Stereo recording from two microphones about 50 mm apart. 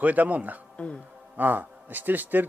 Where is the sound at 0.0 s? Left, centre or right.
Right.